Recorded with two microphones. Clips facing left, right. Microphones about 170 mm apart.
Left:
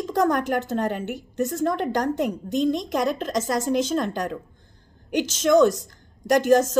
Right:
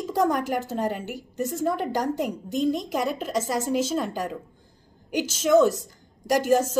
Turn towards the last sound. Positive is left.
turn(degrees=-10)  # may be behind; listen again after turning